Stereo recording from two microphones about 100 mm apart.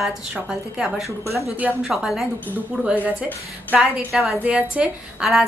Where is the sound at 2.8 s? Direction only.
15° right (ahead or behind).